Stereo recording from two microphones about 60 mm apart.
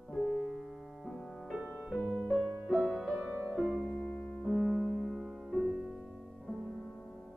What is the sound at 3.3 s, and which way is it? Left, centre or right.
Music, centre.